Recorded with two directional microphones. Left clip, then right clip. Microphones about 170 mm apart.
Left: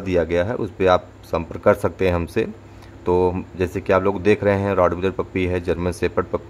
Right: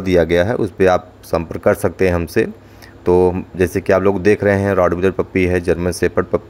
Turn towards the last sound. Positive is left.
turn(degrees=-15)  # may be behind; listen again after turning